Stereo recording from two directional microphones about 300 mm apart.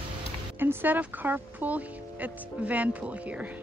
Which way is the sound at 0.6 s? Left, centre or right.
Centre.